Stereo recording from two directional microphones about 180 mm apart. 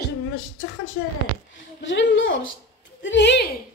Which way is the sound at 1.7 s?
90° left.